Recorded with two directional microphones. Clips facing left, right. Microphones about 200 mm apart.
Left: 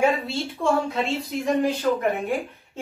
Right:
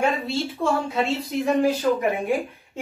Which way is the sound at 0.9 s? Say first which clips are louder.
Right 2 dB; centre (ahead or behind).